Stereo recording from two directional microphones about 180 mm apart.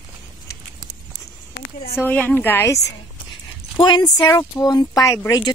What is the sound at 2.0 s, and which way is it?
Speech, 10° left (ahead or behind).